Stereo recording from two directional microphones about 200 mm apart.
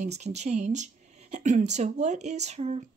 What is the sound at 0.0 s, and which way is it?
Speech, 35° right (ahead or behind).